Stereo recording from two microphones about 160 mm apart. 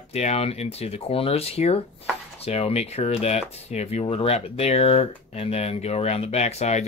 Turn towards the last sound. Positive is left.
turn(degrees=45)  # may be behind; listen again after turning